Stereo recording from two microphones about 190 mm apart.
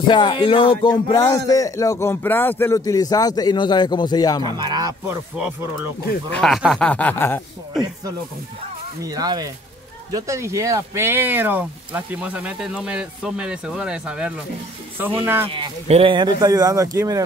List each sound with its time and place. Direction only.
0.1 s a man's voice: 25° left (ahead or behind)
4.4 s speech: 20° right (ahead or behind)
6.3 s speech: centre (ahead or behind)
9.0 s speech: 20° right (ahead or behind)
15.4 s speech: 30° right (ahead or behind)